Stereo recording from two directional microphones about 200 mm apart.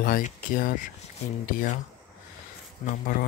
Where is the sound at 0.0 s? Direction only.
45° left (ahead or behind).